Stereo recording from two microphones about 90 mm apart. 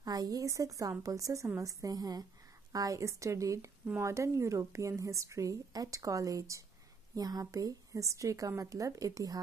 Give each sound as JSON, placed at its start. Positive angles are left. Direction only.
{"t": 0.0, "sound": "a woman's voice", "side_deg": -45}